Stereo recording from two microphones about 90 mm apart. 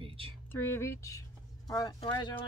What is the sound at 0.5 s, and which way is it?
Speech, 25° left (ahead or behind).